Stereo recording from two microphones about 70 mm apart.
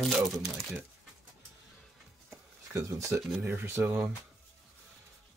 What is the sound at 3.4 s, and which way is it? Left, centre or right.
Speech, right.